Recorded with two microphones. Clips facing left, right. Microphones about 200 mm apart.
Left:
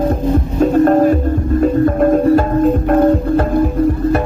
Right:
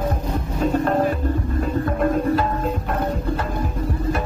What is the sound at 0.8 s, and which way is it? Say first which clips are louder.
Music: left 9 dB; 45° left (ahead or behind).